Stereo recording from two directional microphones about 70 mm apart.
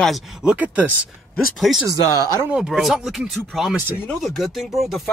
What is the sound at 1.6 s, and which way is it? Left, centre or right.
Speech, centre.